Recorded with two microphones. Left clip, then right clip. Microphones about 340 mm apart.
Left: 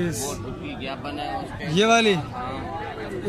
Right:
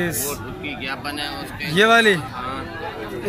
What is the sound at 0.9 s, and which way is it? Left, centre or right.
Speech, left.